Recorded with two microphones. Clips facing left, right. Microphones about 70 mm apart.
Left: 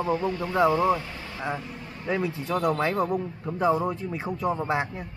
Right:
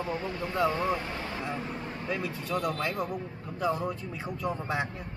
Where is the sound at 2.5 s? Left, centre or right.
Left.